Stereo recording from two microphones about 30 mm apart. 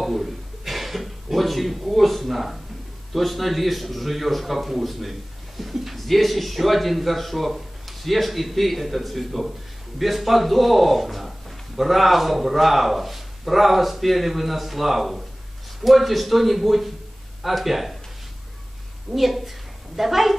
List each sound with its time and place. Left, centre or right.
0.0 s a sound: centre
3.1 s a man's voice: centre
19.1 s a man's voice: centre